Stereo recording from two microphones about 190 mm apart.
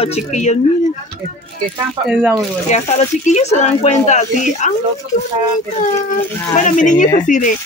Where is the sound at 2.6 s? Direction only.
35° left (ahead or behind).